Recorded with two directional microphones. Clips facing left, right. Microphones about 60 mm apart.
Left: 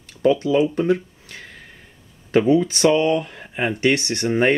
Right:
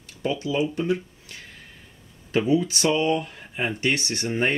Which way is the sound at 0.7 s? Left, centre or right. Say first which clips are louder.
Left 5 dB; left.